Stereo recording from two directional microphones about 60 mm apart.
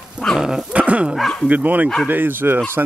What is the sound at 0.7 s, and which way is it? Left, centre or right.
Dog, right.